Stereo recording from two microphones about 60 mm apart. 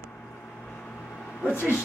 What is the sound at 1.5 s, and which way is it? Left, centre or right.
Speech, left.